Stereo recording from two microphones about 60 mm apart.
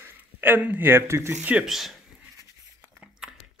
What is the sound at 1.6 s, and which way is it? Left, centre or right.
Speech, centre.